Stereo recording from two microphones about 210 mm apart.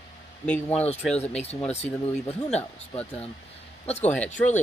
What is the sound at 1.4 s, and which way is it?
Speech, 30° left (ahead or behind).